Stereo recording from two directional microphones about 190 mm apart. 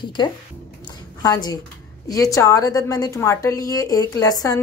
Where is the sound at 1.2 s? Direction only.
20° left (ahead or behind).